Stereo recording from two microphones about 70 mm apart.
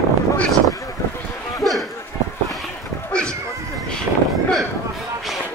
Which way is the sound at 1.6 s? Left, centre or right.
Centre.